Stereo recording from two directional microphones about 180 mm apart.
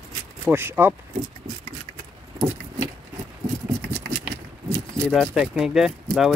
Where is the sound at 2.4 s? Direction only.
15° right (ahead or behind).